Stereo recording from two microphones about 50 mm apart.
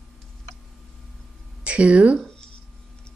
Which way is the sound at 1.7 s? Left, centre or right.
Right.